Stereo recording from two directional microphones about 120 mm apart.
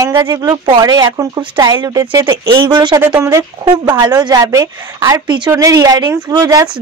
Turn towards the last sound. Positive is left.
turn(degrees=-30)  # may be behind; listen again after turning